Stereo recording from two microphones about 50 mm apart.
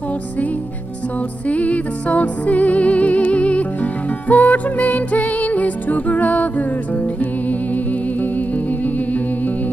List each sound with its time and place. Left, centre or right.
1.5 s music: left